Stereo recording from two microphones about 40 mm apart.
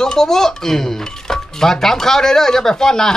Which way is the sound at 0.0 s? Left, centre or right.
Centre.